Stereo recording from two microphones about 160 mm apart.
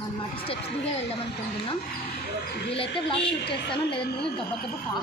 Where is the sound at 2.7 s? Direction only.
35° left (ahead or behind).